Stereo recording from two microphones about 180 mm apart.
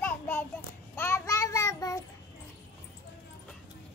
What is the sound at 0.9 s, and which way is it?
Child singing, 15° left (ahead or behind).